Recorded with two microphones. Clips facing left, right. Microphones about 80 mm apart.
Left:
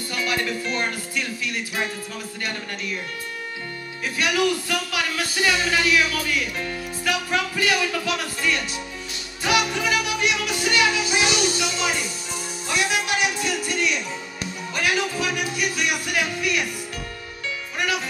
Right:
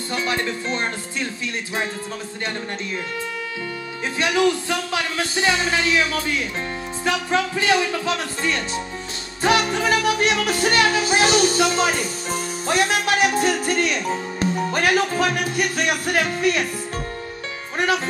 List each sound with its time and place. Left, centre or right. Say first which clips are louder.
0.1 s speech: right 2 dB; right
4.2 s speech: right 3 dB; right
9.4 s music: right 3 dB; right
17.7 s music: right 5 dB; right